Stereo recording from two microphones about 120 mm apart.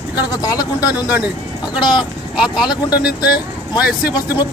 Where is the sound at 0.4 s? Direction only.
30° left (ahead or behind).